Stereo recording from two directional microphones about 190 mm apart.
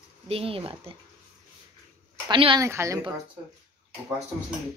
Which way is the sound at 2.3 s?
25° right (ahead or behind).